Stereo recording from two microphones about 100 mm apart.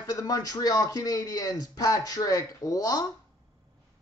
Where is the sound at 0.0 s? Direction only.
35° left (ahead or behind).